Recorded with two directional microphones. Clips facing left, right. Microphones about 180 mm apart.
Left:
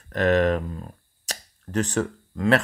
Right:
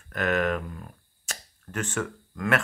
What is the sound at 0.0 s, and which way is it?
Speech, 35° left (ahead or behind).